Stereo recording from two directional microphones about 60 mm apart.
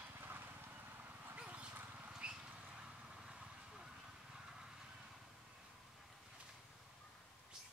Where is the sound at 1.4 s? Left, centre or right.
Right.